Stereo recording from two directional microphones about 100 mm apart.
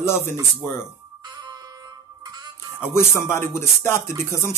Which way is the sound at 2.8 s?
25° left (ahead or behind).